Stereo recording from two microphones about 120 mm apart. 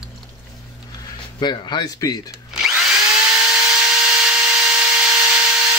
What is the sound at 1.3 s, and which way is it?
Speech, 35° left (ahead or behind).